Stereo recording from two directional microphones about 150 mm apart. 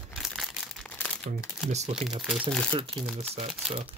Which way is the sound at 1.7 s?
45° right (ahead or behind).